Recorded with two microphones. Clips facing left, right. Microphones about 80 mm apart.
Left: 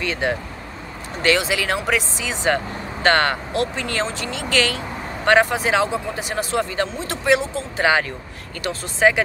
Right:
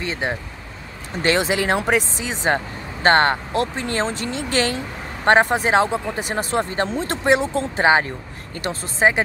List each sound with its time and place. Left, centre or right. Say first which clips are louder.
0.0 s speech: left 2 dB; right
8.6 s speech: left 1 dB; right